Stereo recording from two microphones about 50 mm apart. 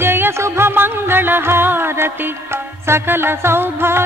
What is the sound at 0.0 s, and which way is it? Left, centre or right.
Music, right.